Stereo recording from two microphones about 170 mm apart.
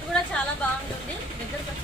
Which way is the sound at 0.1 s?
5° left (ahead or behind).